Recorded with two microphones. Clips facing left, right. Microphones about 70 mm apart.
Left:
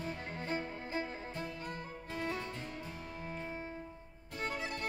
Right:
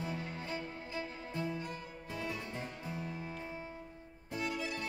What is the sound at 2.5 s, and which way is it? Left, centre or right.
Music, right.